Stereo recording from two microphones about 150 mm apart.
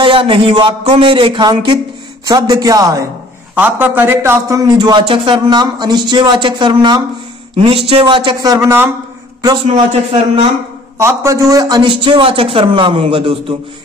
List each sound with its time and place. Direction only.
0.0 s a man's voice: 35° right (ahead or behind)
3.5 s a man's voice: 10° right (ahead or behind)
9.7 s a man's voice: 50° right (ahead or behind)
11.0 s a man's voice: 20° right (ahead or behind); by 13.6 s 35° right (ahead or behind)